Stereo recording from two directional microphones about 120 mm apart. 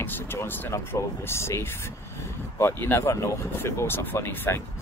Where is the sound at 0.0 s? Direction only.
20° left (ahead or behind).